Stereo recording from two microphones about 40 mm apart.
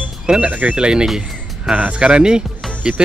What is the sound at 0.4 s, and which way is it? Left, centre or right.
Speech, right.